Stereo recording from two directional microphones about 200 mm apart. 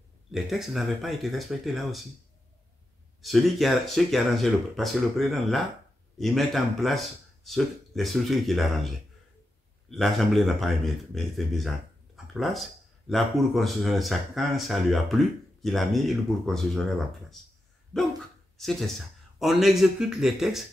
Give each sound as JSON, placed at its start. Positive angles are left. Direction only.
{"t": 0.3, "sound": "speech", "side_deg": 0}
{"t": 3.2, "sound": "speech", "side_deg": 0}
{"t": 17.9, "sound": "speech", "side_deg": 5}